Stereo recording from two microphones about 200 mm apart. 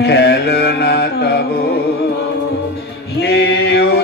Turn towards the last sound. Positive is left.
turn(degrees=55)  # may be behind; listen again after turning